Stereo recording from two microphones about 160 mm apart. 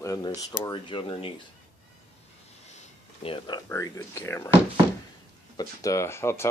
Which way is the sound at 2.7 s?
40° left (ahead or behind).